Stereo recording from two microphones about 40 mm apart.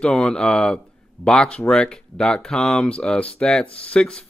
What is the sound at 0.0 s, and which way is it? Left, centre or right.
Speech, left.